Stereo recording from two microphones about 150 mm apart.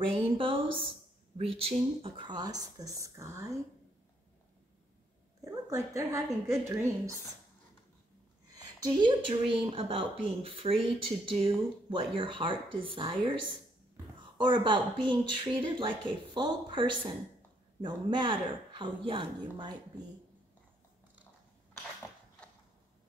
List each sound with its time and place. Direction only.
0.1 s speech: 40° right (ahead or behind); by 3.5 s 20° right (ahead or behind)
5.4 s a woman's voice: 20° right (ahead or behind)
8.7 s speech: 30° right (ahead or behind)